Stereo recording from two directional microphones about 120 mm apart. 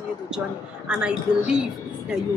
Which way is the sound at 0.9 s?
5° right (ahead or behind).